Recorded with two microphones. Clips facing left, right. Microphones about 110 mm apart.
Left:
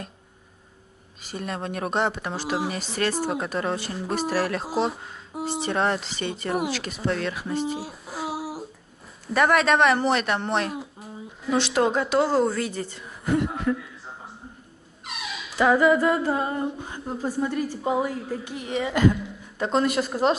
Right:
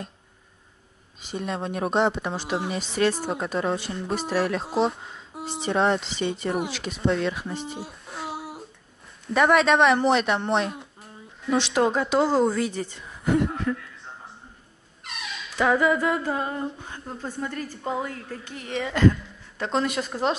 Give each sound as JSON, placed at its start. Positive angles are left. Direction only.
{"t": 1.3, "sound": "speech", "side_deg": 0}
{"t": 15.0, "sound": "humming", "side_deg": 5}
{"t": 19.6, "sound": "speech", "side_deg": 5}